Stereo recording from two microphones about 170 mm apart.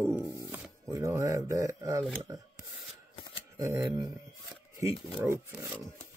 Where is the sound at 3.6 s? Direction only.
15° right (ahead or behind).